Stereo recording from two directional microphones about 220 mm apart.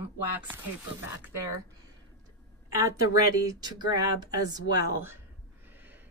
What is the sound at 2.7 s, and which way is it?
Speech, 15° right (ahead or behind).